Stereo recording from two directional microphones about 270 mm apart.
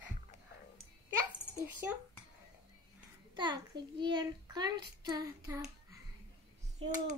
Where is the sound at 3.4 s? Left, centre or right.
Centre.